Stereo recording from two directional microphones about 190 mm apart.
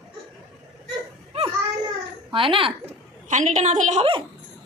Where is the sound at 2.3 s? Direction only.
25° right (ahead or behind).